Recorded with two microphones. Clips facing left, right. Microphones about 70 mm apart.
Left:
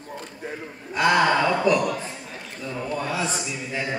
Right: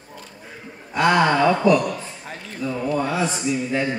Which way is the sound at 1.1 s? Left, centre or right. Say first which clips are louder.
Right 2 dB; centre.